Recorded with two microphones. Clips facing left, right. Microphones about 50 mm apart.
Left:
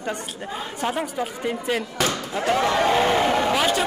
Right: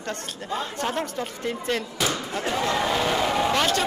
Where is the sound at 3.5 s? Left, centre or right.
Centre.